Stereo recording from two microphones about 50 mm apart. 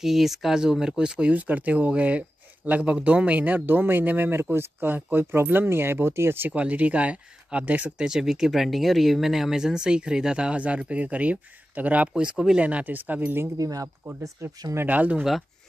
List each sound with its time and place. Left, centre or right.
0.0 s speech: centre; by 6.5 s right
6.5 s speech: right
8.0 s speech: centre; by 13.5 s right
14.2 s speech: right
14.9 s speech: right